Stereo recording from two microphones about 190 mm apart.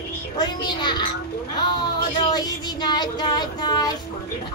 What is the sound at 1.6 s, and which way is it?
Child singing, 20° left (ahead or behind).